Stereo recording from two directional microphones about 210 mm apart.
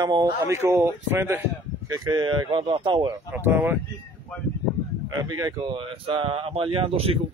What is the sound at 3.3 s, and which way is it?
Speech, 10° right (ahead or behind).